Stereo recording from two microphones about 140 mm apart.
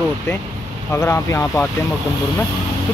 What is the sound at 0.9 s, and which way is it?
Speech, 20° left (ahead or behind).